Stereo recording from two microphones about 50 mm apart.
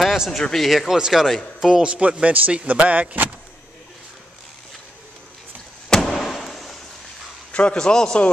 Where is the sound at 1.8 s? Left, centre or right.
Centre.